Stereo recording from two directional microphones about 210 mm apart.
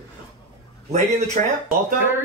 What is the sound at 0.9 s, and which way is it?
Speech, 35° right (ahead or behind).